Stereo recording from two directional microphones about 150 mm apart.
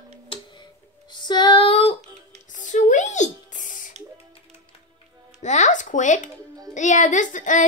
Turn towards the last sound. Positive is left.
turn(degrees=55)  # may be behind; listen again after turning